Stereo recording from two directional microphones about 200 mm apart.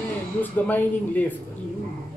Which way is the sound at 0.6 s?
10° left (ahead or behind).